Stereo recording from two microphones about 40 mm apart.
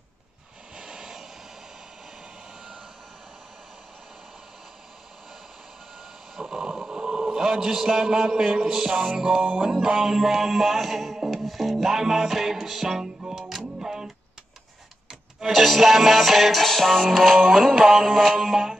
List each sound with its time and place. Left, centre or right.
0.7 s vehicle: centre
6.4 s a sound: centre
7.4 s a man's voice: centre
9.6 s music: centre
11.3 s a man's voice: centre
13.2 s music: centre